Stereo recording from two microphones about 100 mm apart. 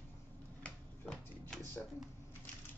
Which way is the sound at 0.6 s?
10° left (ahead or behind).